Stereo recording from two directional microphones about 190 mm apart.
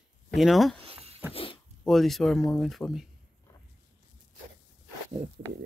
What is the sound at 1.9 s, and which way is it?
Speech, centre (ahead or behind).